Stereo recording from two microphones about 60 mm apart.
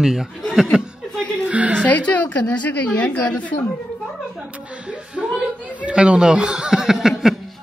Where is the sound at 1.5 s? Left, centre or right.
Right.